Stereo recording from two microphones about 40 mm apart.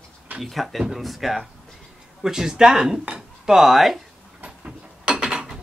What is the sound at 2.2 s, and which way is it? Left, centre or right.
Speech, centre.